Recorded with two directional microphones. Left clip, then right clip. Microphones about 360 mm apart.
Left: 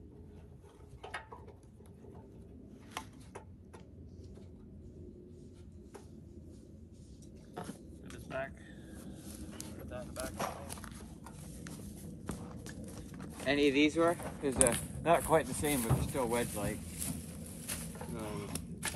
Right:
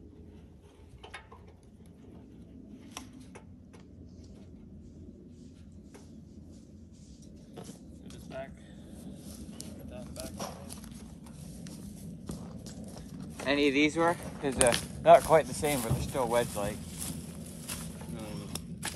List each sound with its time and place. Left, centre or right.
7.5 s vehicle: centre
10.4 s walk: left
10.8 s a sound: centre
13.4 s speech: right
17.6 s walk: centre